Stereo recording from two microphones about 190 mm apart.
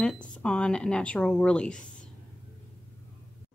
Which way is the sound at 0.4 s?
5° left (ahead or behind).